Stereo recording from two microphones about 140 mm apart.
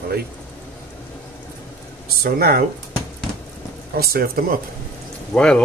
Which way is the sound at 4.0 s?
90° right.